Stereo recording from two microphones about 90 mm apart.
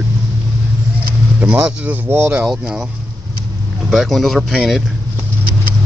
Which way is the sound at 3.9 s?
Centre (ahead or behind).